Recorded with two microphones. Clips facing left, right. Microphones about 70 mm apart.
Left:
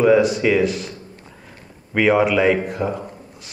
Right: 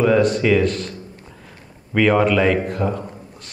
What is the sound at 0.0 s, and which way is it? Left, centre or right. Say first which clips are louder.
Speech: left 1 dB; centre.